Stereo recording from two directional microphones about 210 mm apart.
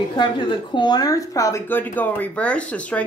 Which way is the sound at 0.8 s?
20° left (ahead or behind).